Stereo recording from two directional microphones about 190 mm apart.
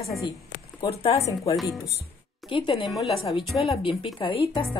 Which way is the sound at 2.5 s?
25° left (ahead or behind).